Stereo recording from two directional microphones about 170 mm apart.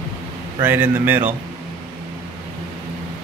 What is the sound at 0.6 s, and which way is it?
Speech, 10° right (ahead or behind).